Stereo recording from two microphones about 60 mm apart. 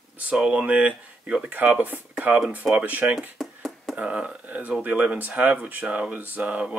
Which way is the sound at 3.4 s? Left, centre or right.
Centre.